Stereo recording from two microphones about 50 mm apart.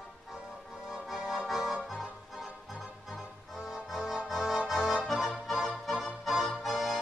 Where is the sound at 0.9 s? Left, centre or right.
Centre.